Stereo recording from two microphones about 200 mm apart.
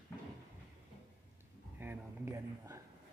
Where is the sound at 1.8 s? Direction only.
10° right (ahead or behind).